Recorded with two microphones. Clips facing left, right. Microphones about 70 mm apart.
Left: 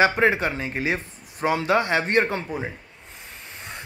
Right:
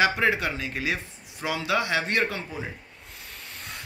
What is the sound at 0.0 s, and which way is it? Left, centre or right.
Speech, left.